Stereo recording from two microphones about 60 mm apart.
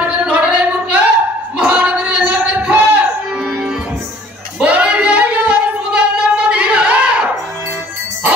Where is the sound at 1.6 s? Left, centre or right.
Centre.